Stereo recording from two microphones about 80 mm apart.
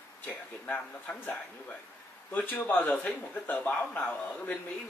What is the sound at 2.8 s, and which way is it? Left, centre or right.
Speech, centre.